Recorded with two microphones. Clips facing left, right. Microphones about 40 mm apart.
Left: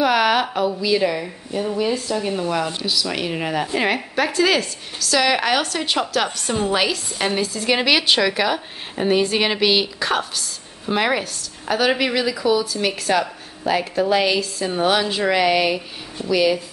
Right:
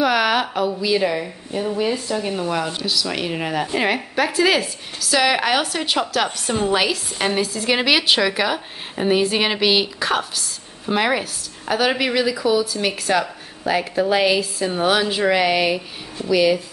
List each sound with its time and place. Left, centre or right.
0.0 s a woman's voice: centre